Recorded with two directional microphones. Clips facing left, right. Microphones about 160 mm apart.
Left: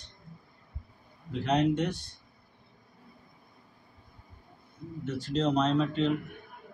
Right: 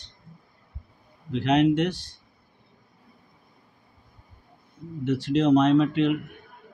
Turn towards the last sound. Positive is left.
turn(degrees=-75)  # may be behind; listen again after turning